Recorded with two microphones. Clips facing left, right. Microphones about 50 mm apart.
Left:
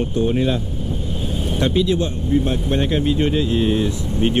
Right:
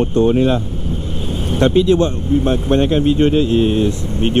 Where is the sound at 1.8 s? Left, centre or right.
Right.